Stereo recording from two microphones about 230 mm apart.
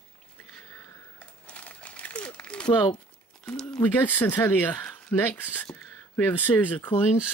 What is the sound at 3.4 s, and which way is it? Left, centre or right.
Speech, centre.